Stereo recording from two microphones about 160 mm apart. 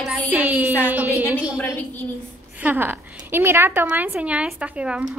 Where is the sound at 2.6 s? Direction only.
10° right (ahead or behind).